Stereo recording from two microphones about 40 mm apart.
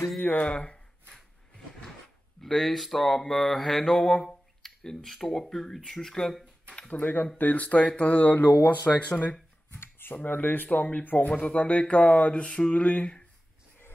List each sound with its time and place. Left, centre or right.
0.4 s speech: left
2.4 s speech: centre
6.9 s speech: left
7.8 s speech: left
8.1 s speech: left
9.7 s a sound: left
10.2 s speech: left